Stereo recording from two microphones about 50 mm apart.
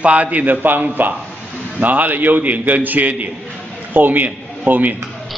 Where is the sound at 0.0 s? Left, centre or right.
Right.